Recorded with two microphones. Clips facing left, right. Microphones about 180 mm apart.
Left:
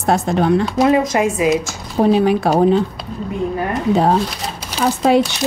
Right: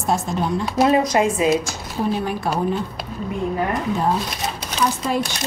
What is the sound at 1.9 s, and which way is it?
Speech, 85° left.